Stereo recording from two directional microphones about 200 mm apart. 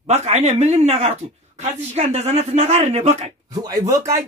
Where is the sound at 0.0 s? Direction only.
35° right (ahead or behind).